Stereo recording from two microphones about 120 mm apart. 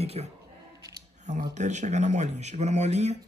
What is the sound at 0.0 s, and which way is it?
Speech, 60° right (ahead or behind).